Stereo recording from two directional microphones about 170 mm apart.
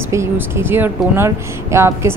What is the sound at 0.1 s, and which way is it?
A woman's voice, 15° right (ahead or behind).